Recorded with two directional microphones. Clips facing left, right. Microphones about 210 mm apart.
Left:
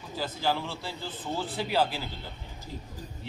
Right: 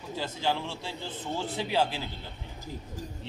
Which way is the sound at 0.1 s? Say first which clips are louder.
Left 1 dB; 25° right (ahead or behind).